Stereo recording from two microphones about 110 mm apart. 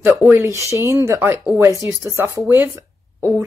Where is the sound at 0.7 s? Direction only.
25° right (ahead or behind).